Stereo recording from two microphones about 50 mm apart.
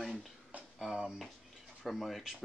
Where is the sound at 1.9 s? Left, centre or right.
Centre.